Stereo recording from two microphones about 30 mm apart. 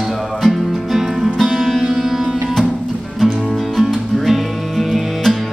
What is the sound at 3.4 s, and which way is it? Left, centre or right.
Music, centre.